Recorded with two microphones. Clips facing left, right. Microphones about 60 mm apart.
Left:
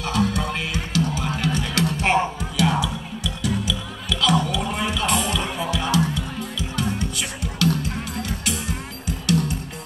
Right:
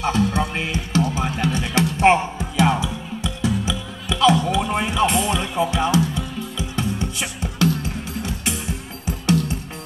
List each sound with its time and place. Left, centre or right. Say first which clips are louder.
0.0 s music: right 3 dB; right
9.0 s music: right 2 dB; right